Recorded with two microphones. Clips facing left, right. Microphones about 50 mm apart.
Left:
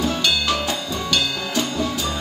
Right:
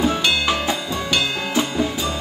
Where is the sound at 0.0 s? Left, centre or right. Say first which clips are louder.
Right 2 dB; centre.